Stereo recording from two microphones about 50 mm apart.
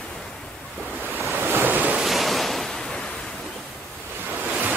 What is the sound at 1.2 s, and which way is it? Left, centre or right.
Waves, right.